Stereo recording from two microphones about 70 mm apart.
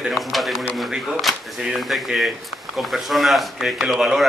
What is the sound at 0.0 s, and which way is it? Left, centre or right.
Speech, centre.